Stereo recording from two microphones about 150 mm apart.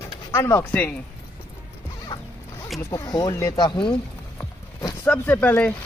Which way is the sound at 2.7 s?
20° left (ahead or behind).